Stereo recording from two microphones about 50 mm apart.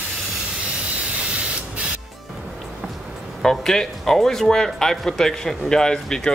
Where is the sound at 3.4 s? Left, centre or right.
Centre.